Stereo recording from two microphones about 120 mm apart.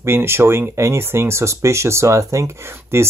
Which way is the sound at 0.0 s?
20° right (ahead or behind).